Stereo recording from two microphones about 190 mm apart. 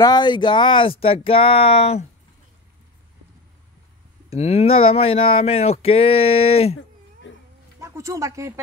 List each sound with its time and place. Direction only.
0.0 s speech: 20° left (ahead or behind)
4.3 s speech: 35° left (ahead or behind)
7.2 s cat: 75° left (ahead or behind)
7.8 s speech: 15° right (ahead or behind)